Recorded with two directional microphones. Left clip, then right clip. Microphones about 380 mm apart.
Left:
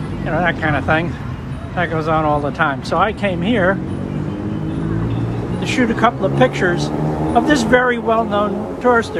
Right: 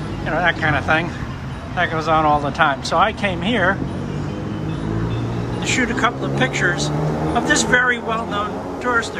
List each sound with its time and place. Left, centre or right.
0.3 s speech: centre
5.7 s speech: centre